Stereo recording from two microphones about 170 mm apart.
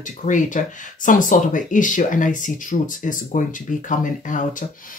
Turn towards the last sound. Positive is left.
turn(degrees=50)  # may be behind; listen again after turning